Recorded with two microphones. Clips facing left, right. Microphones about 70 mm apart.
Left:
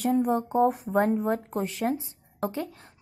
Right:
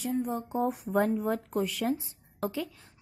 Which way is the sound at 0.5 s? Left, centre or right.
Left.